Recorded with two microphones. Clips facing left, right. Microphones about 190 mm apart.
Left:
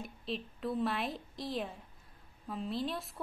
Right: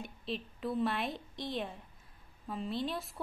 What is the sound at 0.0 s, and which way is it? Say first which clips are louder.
A woman's voice: even; centre (ahead or behind).